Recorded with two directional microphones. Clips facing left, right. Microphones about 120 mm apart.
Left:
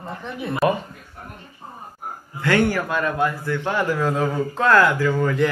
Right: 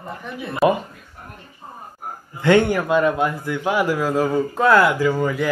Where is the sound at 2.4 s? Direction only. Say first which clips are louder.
Right 4 dB; 20° right (ahead or behind).